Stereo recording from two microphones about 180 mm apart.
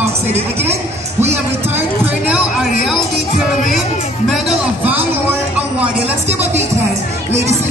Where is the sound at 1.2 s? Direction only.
10° right (ahead or behind).